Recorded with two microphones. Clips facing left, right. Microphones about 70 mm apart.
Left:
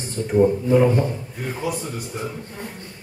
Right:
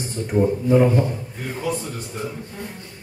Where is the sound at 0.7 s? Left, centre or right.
Centre.